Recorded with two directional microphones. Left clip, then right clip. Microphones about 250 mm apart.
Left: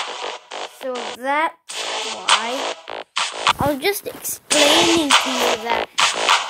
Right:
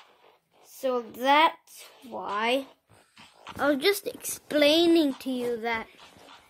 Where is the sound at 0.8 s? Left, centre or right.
Centre.